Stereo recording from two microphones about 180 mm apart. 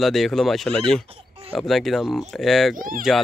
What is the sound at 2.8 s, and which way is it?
Speech, 50° right (ahead or behind).